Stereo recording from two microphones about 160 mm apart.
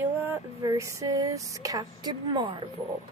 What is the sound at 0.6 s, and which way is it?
Speech, 20° right (ahead or behind).